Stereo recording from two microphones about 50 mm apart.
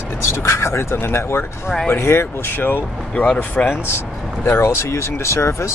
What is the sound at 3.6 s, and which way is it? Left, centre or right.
Speech, left.